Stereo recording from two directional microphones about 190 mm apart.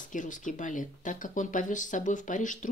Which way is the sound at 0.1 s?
45° left (ahead or behind).